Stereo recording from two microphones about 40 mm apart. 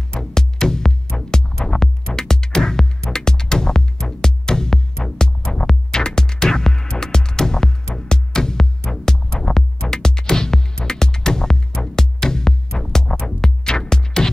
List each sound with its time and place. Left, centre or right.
0.1 s music: centre